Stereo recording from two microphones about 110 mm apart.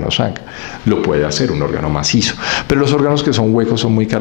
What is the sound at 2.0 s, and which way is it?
Speech, 15° left (ahead or behind).